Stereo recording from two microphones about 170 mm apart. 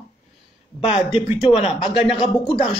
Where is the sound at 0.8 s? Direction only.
35° left (ahead or behind).